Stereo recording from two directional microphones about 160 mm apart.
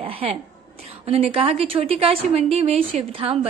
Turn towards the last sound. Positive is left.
turn(degrees=-40)  # may be behind; listen again after turning